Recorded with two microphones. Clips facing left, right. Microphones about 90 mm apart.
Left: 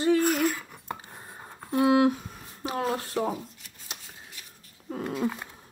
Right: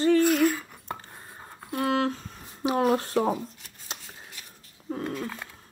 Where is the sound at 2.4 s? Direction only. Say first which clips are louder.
Right 6 dB; 15° right (ahead or behind).